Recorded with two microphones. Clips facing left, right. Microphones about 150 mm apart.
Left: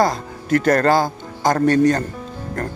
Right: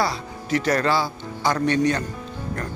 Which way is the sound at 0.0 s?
50° left (ahead or behind).